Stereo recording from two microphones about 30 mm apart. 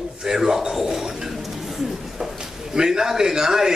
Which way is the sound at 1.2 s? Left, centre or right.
Centre.